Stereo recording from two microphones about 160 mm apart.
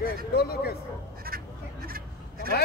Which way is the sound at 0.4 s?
75° left (ahead or behind).